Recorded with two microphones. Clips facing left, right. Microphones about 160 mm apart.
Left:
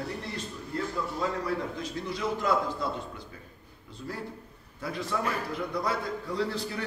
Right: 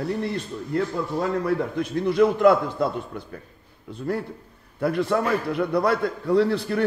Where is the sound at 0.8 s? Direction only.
55° right (ahead or behind).